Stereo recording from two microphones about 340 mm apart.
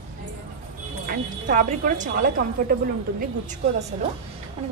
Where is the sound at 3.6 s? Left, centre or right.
Right.